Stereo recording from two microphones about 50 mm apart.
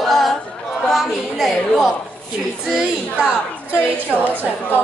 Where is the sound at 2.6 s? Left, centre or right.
Centre.